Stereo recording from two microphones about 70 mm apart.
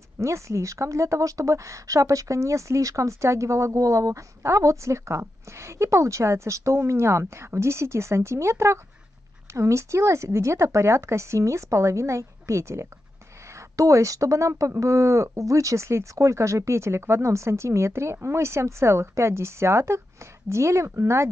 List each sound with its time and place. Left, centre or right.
0.2 s a woman's voice: right